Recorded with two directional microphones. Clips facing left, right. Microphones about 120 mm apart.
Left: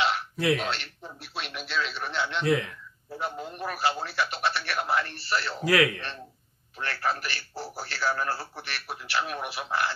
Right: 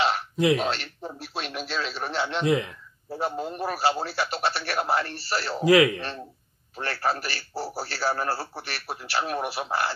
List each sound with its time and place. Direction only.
0.6 s a man's voice: 40° right (ahead or behind)
2.4 s speech: 20° right (ahead or behind)
3.1 s a man's voice: 35° right (ahead or behind)
5.6 s speech: 20° right (ahead or behind)
6.8 s a man's voice: 35° right (ahead or behind)